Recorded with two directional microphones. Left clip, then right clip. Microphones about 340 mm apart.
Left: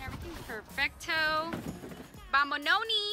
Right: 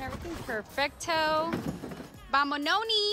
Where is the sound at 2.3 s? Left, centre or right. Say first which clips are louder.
Right 1 dB; centre.